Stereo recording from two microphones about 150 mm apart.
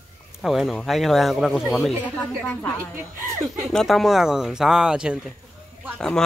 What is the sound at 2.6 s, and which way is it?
Speech, 15° left (ahead or behind).